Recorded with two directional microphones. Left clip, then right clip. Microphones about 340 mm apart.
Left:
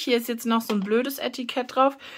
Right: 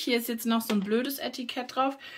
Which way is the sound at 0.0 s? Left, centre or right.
Centre.